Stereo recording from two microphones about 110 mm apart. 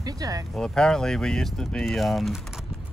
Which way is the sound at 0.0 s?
30° right (ahead or behind).